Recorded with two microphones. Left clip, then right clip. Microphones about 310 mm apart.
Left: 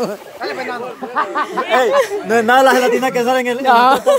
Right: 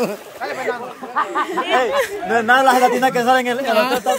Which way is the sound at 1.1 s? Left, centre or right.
Left.